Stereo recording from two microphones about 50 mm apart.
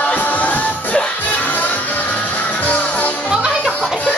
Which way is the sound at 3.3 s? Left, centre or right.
Right.